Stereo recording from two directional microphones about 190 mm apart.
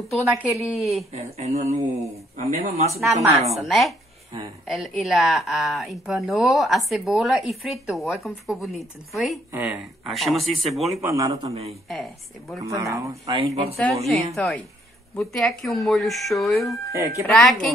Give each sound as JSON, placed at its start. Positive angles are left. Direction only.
{"t": 0.3, "sound": "speech", "side_deg": 0}
{"t": 1.4, "sound": "speech", "side_deg": -35}
{"t": 2.9, "sound": "a woman's voice", "side_deg": -15}
{"t": 3.5, "sound": "speech", "side_deg": 0}
{"t": 11.0, "sound": "a woman's voice", "side_deg": -15}
{"t": 11.4, "sound": "speech", "side_deg": -35}
{"t": 11.9, "sound": "speech", "side_deg": 0}
{"t": 12.6, "sound": "a woman's voice", "side_deg": -15}
{"t": 13.3, "sound": "speech", "side_deg": -30}
{"t": 14.0, "sound": "speech", "side_deg": 0}